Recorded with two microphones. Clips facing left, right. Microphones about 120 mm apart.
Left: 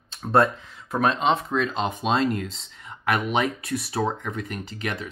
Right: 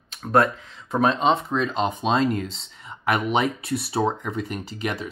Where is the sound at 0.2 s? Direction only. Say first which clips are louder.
Even; centre (ahead or behind).